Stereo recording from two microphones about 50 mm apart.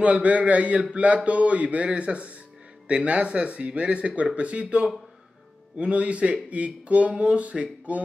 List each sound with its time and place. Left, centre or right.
0.0 s speech: right